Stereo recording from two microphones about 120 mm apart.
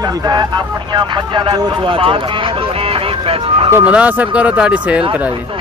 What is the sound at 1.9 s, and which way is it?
Speech, 50° right (ahead or behind).